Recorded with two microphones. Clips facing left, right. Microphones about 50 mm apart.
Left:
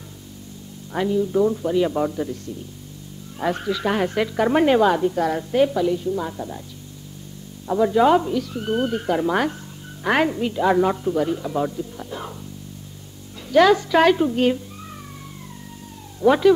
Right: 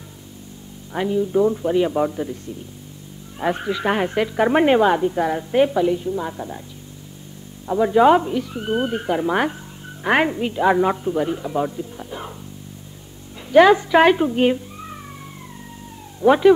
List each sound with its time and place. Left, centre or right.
0.9 s a man's voice: centre
3.3 s speech: centre
7.8 s a man's voice: centre
13.5 s speech: right
16.3 s a man's voice: centre